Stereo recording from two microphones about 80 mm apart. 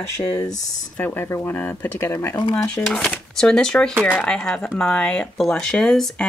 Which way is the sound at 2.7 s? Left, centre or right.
Centre.